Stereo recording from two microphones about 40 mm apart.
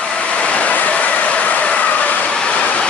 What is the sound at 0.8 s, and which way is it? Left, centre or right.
Vehicle, left.